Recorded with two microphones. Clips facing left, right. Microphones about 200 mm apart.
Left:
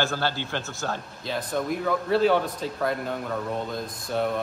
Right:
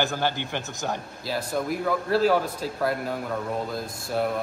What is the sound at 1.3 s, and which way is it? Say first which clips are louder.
A man's voice: even; 5° right (ahead or behind).